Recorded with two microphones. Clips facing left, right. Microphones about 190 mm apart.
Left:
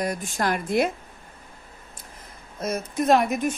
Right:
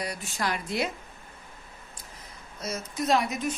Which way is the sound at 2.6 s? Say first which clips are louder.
Left 6 dB; 55° left (ahead or behind).